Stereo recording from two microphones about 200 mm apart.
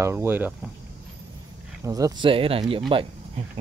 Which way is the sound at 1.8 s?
15° right (ahead or behind).